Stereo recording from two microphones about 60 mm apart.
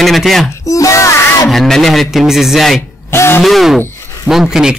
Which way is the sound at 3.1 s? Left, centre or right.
Left.